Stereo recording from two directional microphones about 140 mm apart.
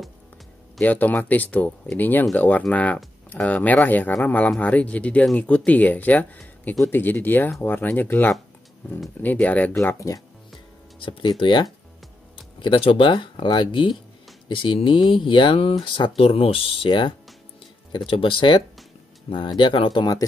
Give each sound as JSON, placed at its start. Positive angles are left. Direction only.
{"t": 0.7, "sound": "speech", "side_deg": 10}
{"t": 9.8, "sound": "speech", "side_deg": 20}
{"t": 11.0, "sound": "speech", "side_deg": 35}